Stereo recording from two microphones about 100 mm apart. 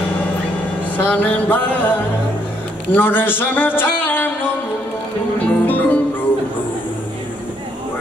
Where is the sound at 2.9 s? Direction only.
20° left (ahead or behind).